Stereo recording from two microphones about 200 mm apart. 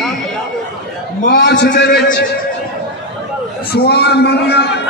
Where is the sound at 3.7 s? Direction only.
55° left (ahead or behind).